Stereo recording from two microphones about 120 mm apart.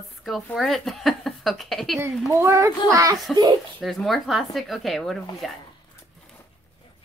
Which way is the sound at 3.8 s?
Centre (ahead or behind).